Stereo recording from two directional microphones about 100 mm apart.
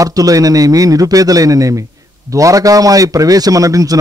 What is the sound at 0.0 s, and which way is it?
Speech, 35° right (ahead or behind).